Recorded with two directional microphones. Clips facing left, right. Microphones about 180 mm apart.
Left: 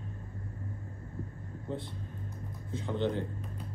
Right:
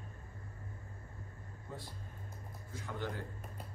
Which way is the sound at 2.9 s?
25° left (ahead or behind).